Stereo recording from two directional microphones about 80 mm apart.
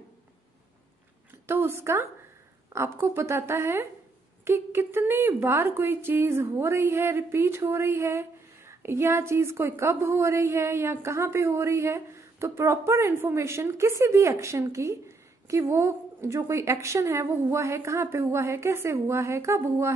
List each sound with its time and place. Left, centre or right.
1.5 s a woman's voice: right